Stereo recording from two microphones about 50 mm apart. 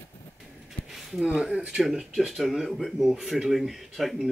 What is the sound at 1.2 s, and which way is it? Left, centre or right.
Speech, right.